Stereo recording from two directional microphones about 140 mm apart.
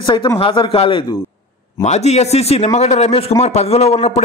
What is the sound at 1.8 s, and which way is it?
A man's voice, 50° left (ahead or behind).